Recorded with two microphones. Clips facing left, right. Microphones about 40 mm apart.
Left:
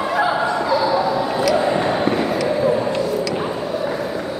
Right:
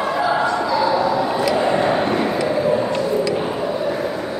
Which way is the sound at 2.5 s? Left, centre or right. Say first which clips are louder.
Even; centre.